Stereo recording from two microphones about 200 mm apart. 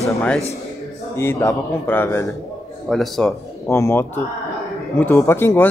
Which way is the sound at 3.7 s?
10° left (ahead or behind).